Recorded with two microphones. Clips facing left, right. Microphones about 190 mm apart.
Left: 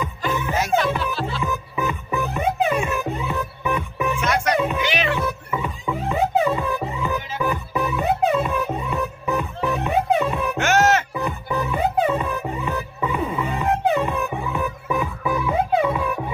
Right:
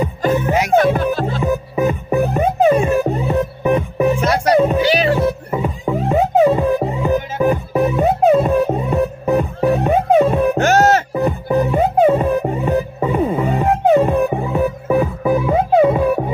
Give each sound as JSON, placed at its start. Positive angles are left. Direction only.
{"t": 0.0, "sound": "music", "side_deg": -45}